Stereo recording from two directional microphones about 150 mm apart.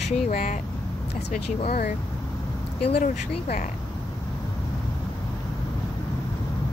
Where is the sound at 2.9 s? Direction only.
75° left (ahead or behind).